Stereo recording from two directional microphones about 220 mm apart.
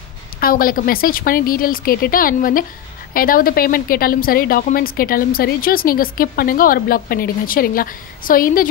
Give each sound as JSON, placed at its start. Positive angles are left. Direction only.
{"t": 0.4, "sound": "speech", "side_deg": 40}